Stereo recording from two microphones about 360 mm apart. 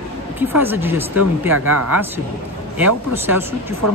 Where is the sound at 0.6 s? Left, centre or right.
Centre.